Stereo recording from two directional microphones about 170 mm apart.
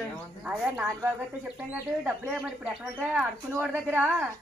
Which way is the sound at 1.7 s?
10° right (ahead or behind).